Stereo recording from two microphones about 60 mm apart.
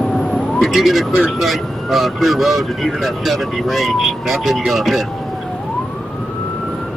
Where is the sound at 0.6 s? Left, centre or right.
Centre.